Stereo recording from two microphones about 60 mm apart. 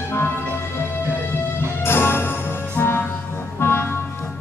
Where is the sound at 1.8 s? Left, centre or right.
Left.